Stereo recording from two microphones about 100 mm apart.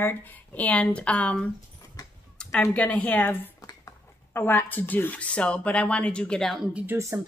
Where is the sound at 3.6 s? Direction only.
30° left (ahead or behind); by 6.6 s 5° left (ahead or behind).